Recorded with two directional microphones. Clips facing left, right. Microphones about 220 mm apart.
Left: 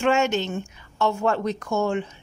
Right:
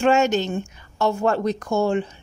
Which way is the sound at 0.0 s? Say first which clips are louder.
Right 3 dB; 40° right (ahead or behind).